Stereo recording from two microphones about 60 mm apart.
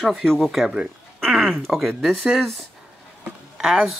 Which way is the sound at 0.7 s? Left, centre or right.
Centre.